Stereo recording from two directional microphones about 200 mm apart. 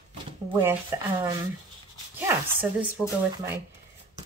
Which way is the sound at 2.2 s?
10° right (ahead or behind).